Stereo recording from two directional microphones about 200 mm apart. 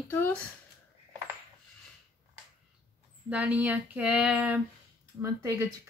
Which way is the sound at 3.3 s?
5° right (ahead or behind).